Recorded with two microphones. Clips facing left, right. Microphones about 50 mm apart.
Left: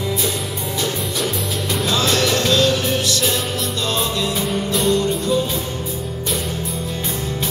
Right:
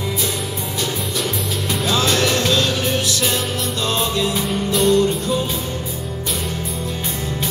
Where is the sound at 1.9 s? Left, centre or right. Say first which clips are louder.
Right 1 dB; centre.